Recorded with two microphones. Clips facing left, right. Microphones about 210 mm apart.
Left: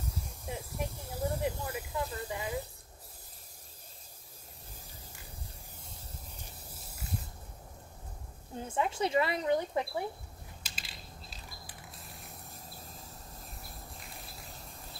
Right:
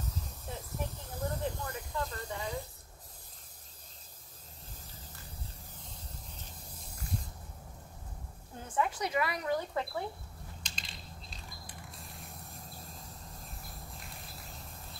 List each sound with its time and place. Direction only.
0.0 s snake: 10° left (ahead or behind)
8.6 s speech: 25° left (ahead or behind)
10.6 s a sound: 5° left (ahead or behind)